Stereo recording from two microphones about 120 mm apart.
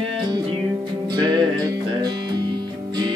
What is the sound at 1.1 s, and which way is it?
Music, 40° right (ahead or behind).